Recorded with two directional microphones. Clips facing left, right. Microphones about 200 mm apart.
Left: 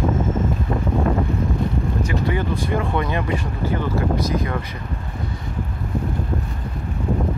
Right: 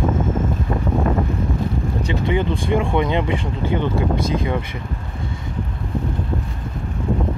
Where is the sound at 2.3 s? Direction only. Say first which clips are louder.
Right 3 dB; 15° right (ahead or behind).